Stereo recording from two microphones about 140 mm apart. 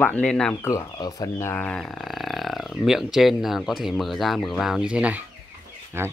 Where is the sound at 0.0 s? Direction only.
10° left (ahead or behind).